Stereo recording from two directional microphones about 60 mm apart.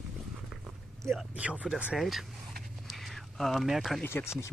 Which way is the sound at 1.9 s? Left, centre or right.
Centre.